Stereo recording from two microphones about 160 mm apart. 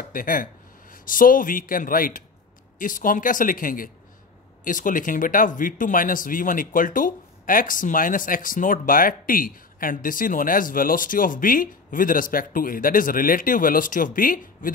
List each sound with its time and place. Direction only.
0.1 s speech: 60° left (ahead or behind)